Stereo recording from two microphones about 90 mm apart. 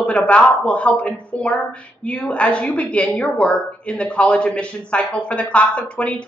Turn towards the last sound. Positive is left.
turn(degrees=15)  # may be behind; listen again after turning